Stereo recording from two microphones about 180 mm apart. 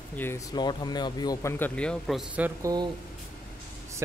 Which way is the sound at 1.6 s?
5° left (ahead or behind).